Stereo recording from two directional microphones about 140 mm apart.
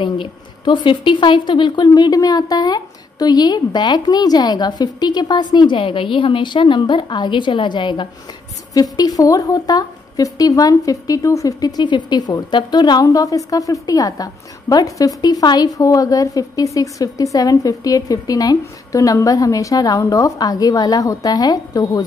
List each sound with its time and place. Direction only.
0.0 s a woman's voice: 35° left (ahead or behind)